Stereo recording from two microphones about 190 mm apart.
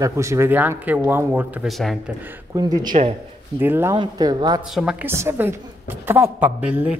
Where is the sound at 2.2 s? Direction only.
10° right (ahead or behind).